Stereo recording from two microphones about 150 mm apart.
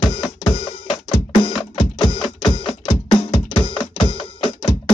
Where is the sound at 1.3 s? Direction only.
35° left (ahead or behind).